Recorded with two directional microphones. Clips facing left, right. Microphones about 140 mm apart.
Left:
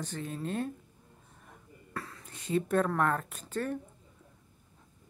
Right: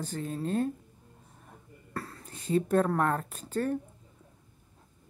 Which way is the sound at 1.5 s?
35° right (ahead or behind).